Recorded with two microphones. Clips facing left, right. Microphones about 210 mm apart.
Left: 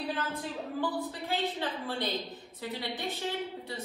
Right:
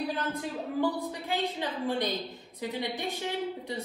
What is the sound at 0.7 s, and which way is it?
A woman's voice, 15° right (ahead or behind).